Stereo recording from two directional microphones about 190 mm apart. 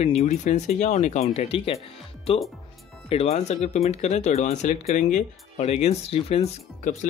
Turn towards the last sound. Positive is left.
turn(degrees=40)  # may be behind; listen again after turning